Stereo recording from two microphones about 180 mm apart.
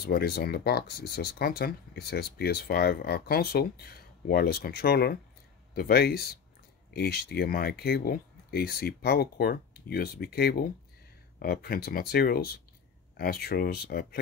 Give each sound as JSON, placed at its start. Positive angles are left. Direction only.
{"t": 0.0, "sound": "speech", "side_deg": 60}